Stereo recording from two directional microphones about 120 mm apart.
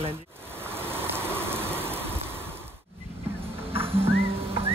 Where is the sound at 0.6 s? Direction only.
20° right (ahead or behind).